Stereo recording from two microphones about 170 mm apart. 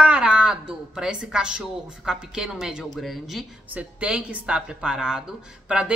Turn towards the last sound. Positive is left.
turn(degrees=-5)  # may be behind; listen again after turning